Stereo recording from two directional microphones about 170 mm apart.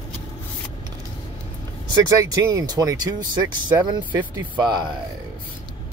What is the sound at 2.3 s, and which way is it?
Speech, 20° right (ahead or behind).